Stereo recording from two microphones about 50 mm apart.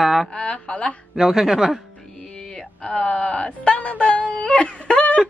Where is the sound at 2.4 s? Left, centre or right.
Centre.